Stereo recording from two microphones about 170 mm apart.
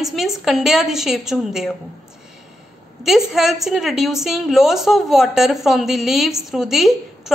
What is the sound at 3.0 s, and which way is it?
A woman's voice, centre (ahead or behind).